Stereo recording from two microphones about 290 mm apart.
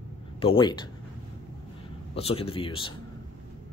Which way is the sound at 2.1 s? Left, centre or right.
Centre.